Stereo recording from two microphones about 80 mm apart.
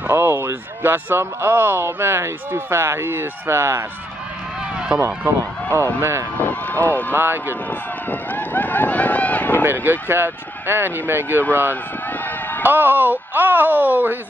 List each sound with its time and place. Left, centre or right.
0.1 s speech: right
4.9 s speech: right
6.4 s vehicle: left
7.1 s speech: right
8.1 s run: left
9.6 s speech: right
12.6 s speech: right